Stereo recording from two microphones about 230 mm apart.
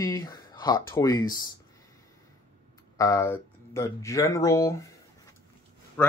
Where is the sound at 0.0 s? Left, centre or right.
Centre.